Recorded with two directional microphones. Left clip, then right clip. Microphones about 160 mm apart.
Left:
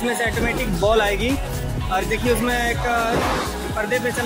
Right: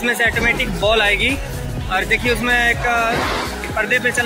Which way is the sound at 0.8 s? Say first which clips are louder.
Right 3 dB; 20° left (ahead or behind).